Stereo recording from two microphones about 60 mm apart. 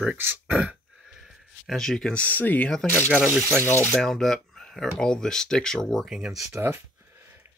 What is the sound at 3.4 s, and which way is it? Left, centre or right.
Speech, right.